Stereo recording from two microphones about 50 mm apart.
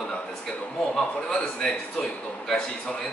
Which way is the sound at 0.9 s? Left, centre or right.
Centre.